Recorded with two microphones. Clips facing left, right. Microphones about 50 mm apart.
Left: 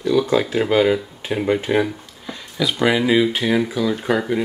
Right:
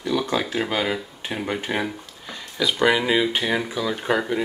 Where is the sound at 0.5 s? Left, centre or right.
Centre.